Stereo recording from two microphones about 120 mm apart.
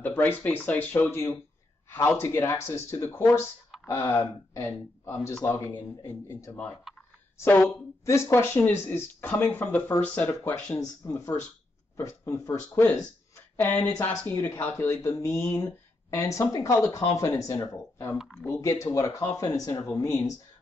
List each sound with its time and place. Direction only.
0.0 s a woman's voice: 15° left (ahead or behind)
12.7 s speech: 15° left (ahead or behind)
18.1 s speech: 5° right (ahead or behind)
18.5 s speech: 25° left (ahead or behind)